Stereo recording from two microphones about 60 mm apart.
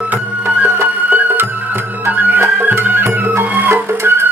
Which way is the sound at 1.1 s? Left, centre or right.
Right.